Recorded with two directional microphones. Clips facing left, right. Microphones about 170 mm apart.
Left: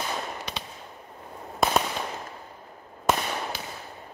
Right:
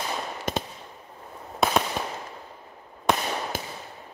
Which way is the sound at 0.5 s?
45° right (ahead or behind).